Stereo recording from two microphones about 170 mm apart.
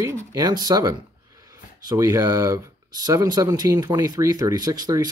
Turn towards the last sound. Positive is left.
turn(degrees=-20)  # may be behind; listen again after turning